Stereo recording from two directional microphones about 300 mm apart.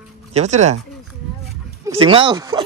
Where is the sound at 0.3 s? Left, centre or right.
Right.